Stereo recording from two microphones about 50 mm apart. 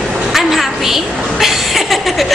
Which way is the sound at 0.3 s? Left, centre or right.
Centre.